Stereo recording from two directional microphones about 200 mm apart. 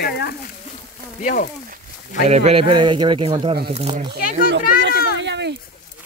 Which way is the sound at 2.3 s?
30° right (ahead or behind).